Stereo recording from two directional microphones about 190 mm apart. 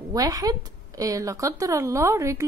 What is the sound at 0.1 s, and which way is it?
Speech, 20° right (ahead or behind).